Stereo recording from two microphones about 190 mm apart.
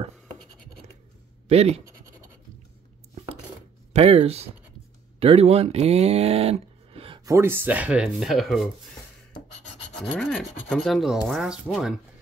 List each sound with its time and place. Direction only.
1.5 s speech: 35° right (ahead or behind)
3.9 s speech: 30° right (ahead or behind)
7.2 s speech: 15° right (ahead or behind)
9.9 s rub: 5° left (ahead or behind)